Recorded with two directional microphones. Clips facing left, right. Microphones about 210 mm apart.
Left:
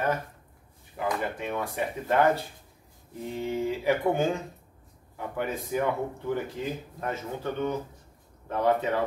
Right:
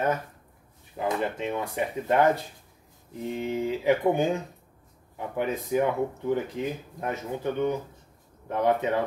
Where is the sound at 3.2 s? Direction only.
15° right (ahead or behind).